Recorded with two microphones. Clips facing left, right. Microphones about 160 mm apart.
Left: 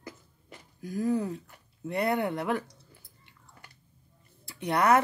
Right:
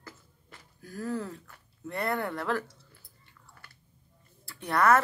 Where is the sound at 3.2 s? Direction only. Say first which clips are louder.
Even; 20° left (ahead or behind).